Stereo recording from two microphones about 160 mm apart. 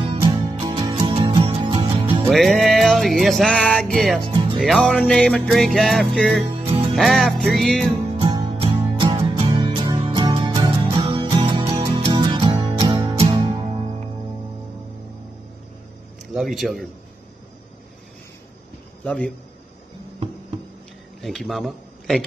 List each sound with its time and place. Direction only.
0.2 s music: 25° right (ahead or behind)
2.2 s music: centre (ahead or behind)
4.3 s music: 35° right (ahead or behind)
4.6 s music: 5° left (ahead or behind)
6.4 s music: 35° right (ahead or behind)
7.0 s music: centre (ahead or behind)
8.2 s music: 30° right (ahead or behind)
16.3 s music: centre (ahead or behind)
19.0 s a man's voice: 10° left (ahead or behind)
21.2 s a man's voice: centre (ahead or behind)